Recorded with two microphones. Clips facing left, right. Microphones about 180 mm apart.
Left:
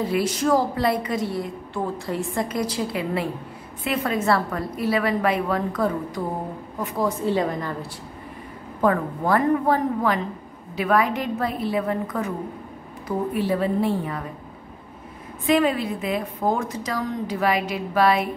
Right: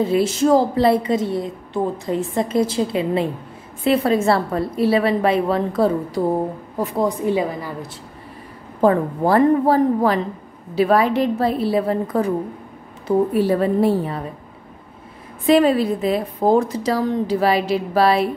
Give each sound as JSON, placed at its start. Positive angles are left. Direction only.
{"t": 0.0, "sound": "a woman's voice", "side_deg": -25}
{"t": 7.0, "sound": "a woman's voice", "side_deg": -15}
{"t": 8.8, "sound": "a woman's voice", "side_deg": -30}
{"t": 13.3, "sound": "a woman's voice", "side_deg": -40}
{"t": 15.4, "sound": "a woman's voice", "side_deg": -35}